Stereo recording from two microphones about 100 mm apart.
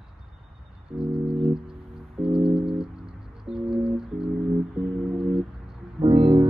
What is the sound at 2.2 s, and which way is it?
Music, 5° right (ahead or behind).